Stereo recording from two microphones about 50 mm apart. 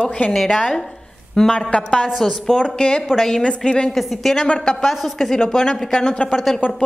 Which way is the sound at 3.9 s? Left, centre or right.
Centre.